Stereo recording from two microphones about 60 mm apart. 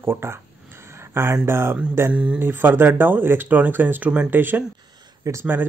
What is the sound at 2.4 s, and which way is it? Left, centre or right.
Speech, right.